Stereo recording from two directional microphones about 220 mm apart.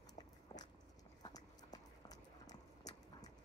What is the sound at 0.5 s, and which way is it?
Biting, 20° left (ahead or behind).